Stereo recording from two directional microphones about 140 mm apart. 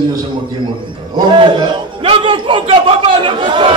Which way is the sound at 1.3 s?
35° right (ahead or behind).